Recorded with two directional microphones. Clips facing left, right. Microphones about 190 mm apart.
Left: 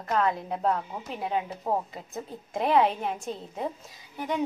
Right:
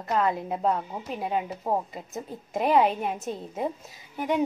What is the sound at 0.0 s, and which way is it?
A woman's voice, 5° right (ahead or behind).